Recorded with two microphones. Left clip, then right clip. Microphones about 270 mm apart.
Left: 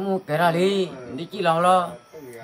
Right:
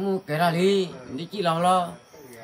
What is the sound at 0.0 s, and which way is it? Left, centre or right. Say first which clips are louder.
A man's voice: left 3 dB; centre.